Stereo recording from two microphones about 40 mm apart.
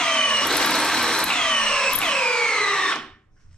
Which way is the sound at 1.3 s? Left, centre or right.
Left.